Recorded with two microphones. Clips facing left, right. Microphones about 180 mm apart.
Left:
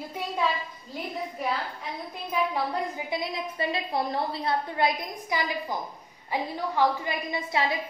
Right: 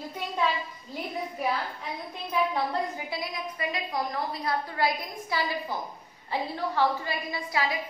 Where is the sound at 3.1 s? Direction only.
25° left (ahead or behind).